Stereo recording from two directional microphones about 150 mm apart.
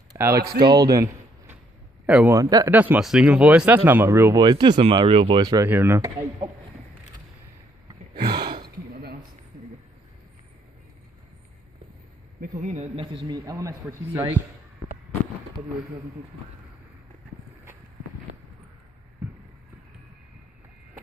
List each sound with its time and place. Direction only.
0.1 s speech: 15° right (ahead or behind)
0.5 s speech: 30° right (ahead or behind)
2.0 s speech: 10° right (ahead or behind)
2.3 s speech: 25° right (ahead or behind)
2.7 s speech: 10° right (ahead or behind)
4.4 s speech: 30° right (ahead or behind)
8.1 s a sound: 30° right (ahead or behind)
8.6 s a sound: 90° right
12.4 s a man's voice: 55° right (ahead or behind)
13.0 s speech: 25° right (ahead or behind)